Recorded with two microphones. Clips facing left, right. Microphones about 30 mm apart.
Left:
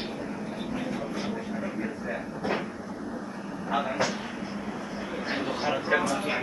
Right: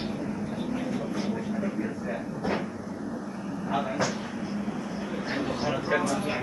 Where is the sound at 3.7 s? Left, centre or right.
Centre.